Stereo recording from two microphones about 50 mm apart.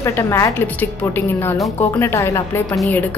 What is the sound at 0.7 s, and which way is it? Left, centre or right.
Speech, left.